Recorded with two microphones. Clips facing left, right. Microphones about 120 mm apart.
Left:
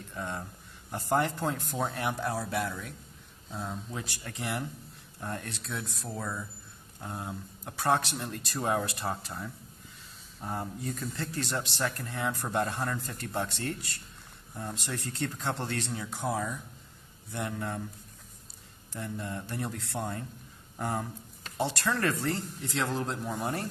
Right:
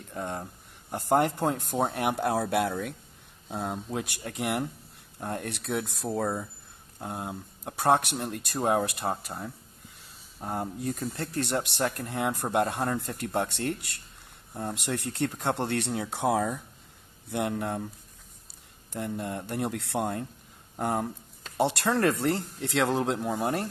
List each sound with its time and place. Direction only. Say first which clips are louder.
0.1 s speech: right 3 dB; 45° right (ahead or behind)
10.4 s speech: right 2 dB; 45° right (ahead or behind)
10.8 s speech: right 4 dB; 55° right (ahead or behind)
18.9 s speech: right 4 dB; 55° right (ahead or behind)
20.7 s speech: right 4 dB; 50° right (ahead or behind)